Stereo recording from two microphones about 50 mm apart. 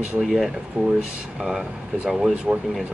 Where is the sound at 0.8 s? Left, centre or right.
Right.